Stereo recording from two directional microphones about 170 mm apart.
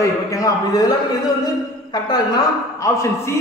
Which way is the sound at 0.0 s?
20° left (ahead or behind).